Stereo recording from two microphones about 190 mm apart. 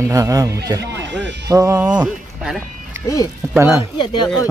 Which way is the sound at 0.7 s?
65° right (ahead or behind).